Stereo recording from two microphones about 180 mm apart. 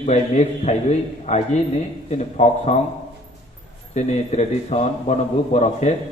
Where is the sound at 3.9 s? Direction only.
40° left (ahead or behind).